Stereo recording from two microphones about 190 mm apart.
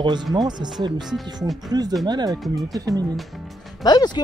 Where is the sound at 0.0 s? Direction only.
25° right (ahead or behind).